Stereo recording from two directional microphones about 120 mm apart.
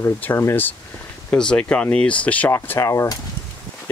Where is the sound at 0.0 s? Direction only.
20° left (ahead or behind).